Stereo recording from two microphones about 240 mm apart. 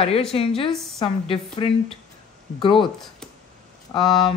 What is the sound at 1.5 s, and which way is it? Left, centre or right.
Speech, left.